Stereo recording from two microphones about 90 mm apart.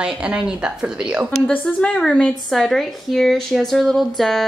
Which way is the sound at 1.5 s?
15° left (ahead or behind).